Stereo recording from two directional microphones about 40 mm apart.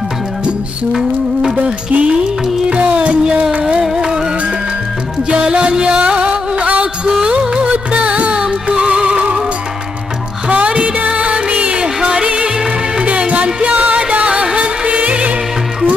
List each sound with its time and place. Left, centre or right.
1.9 s music: right
3.8 s music: centre
5.3 s music: right
10.5 s music: right